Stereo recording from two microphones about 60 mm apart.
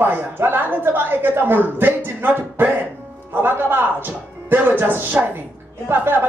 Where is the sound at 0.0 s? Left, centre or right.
Right.